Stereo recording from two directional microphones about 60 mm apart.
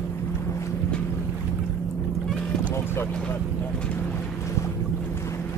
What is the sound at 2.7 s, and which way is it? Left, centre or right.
Boat, left.